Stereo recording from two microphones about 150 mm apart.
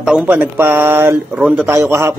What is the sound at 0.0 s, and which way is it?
A man's voice, 10° right (ahead or behind).